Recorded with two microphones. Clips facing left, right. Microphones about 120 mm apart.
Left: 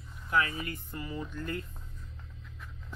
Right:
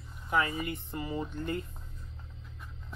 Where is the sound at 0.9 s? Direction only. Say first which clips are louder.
Right 3 dB; 25° right (ahead or behind).